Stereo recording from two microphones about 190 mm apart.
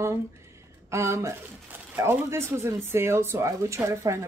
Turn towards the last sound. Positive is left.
turn(degrees=-15)  # may be behind; listen again after turning